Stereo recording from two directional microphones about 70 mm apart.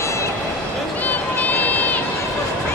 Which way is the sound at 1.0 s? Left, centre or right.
Left.